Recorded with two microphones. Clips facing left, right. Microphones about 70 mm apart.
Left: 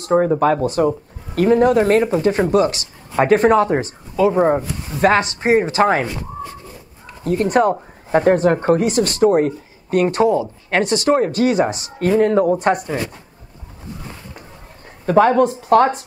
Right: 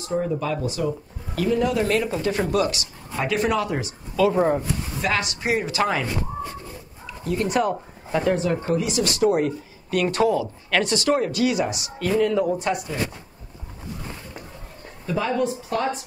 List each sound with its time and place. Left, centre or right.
0.0 s speech: left
4.3 s speech: left
4.6 s speech: left
7.1 s speech: left
15.0 s speech: left